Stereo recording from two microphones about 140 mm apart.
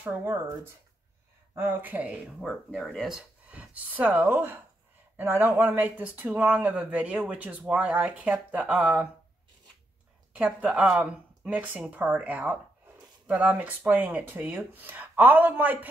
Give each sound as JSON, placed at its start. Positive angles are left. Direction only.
{"t": 0.0, "sound": "speech", "side_deg": -15}
{"t": 2.4, "sound": "speech", "side_deg": 5}
{"t": 10.3, "sound": "speech", "side_deg": -10}